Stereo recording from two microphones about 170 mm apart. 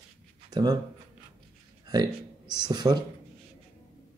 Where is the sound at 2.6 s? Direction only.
25° right (ahead or behind).